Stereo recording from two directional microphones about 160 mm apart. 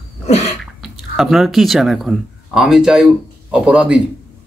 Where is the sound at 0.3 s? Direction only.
40° left (ahead or behind).